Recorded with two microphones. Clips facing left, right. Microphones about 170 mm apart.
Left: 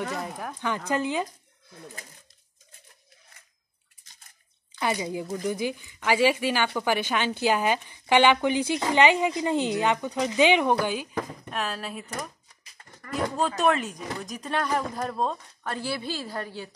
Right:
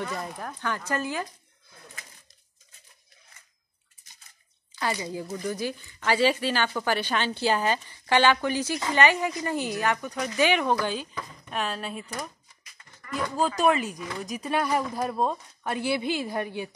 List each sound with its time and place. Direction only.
0.1 s speech: 5° left (ahead or behind)
4.7 s speech: 15° left (ahead or behind)
11.5 s speech: centre (ahead or behind)
13.0 s a sound: 45° left (ahead or behind)
13.6 s speech: centre (ahead or behind)